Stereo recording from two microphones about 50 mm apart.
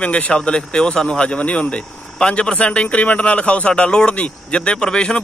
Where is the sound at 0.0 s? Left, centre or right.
Left.